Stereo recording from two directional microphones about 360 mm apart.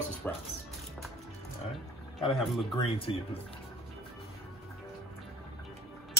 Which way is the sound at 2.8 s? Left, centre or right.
Centre.